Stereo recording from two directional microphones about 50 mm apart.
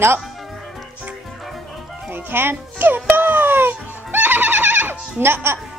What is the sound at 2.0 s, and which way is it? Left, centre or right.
Music, right.